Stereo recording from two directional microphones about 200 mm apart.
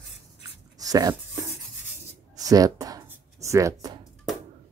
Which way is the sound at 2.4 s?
15° right (ahead or behind).